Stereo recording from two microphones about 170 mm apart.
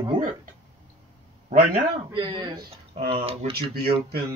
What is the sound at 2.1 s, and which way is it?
Speech, 25° right (ahead or behind).